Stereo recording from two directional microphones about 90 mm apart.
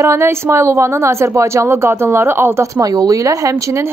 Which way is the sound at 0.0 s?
30° right (ahead or behind).